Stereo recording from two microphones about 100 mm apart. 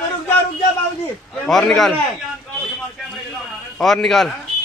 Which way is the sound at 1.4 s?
5° left (ahead or behind).